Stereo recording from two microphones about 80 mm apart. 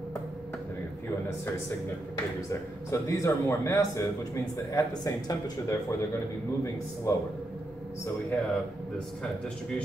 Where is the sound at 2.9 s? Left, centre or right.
Left.